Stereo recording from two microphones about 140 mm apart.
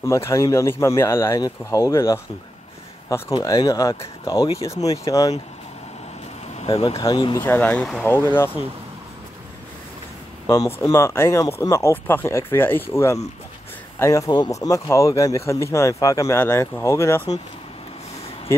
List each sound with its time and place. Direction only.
0.0 s speech: 20° left (ahead or behind)
3.4 s speech: 25° left (ahead or behind)
6.5 s speech: 45° left (ahead or behind)
7.0 s speech: 30° left (ahead or behind)
7.4 s speech: 15° left (ahead or behind)
8.1 s speech: 15° left (ahead or behind)
10.4 s speech: 25° left (ahead or behind)